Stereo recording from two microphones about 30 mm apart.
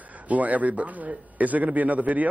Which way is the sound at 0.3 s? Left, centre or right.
Right.